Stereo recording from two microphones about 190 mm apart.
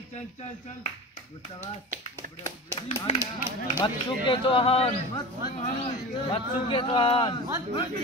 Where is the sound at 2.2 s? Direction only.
45° right (ahead or behind).